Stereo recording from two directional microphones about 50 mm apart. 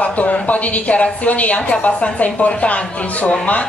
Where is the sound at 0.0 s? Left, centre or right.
Left.